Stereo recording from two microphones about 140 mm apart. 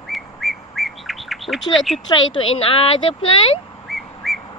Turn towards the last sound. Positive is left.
turn(degrees=0)  # may be behind; listen again after turning